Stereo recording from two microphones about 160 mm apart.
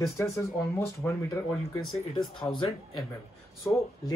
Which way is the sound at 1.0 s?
15° left (ahead or behind).